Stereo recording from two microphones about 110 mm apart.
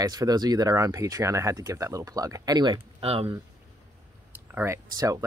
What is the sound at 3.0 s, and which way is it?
Speech, 60° right (ahead or behind).